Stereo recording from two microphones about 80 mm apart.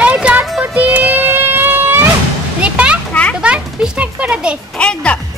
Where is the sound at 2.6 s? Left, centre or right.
Centre.